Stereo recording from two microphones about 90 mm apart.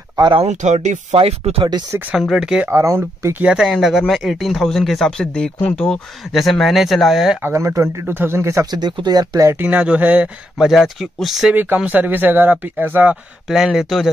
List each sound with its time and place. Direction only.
0.2 s speech: 70° right (ahead or behind)
1.1 s speech: 90° right
2.1 s a man's voice: 5° right (ahead or behind)
2.7 s speech: 35° right (ahead or behind)
3.3 s speech: 10° right (ahead or behind); by 5.9 s 15° left (ahead or behind)
6.3 s speech: centre (ahead or behind)
7.4 s speech: 35° right (ahead or behind)
8.6 s speech: 55° right (ahead or behind)
9.6 s a man's voice: 15° right (ahead or behind)
10.7 s speech: 5° right (ahead or behind)
11.5 s speech: 20° right (ahead or behind)
13.5 s speech: 5° right (ahead or behind)